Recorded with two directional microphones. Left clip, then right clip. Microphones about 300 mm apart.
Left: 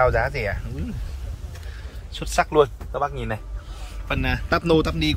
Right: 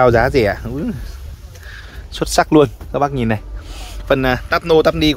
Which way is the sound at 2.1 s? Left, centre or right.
Centre.